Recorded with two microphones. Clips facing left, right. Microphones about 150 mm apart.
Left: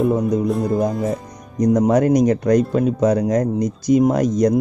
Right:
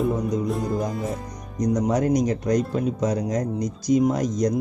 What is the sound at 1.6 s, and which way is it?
Speech, 55° left (ahead or behind).